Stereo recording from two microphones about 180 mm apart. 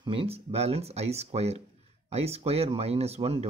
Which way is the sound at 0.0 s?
30° right (ahead or behind).